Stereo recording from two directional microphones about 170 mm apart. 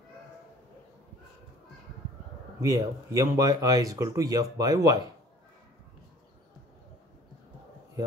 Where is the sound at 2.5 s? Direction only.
20° right (ahead or behind).